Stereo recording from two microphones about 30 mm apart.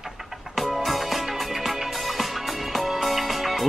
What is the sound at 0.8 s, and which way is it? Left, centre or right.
Music, centre.